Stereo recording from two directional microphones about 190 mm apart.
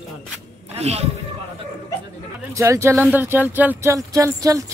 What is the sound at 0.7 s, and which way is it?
Speech, 35° right (ahead or behind).